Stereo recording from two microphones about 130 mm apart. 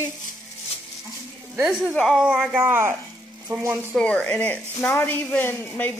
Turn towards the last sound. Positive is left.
turn(degrees=15)  # may be behind; listen again after turning